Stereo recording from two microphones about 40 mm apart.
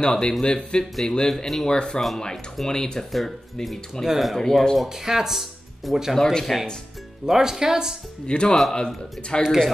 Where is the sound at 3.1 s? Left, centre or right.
Centre.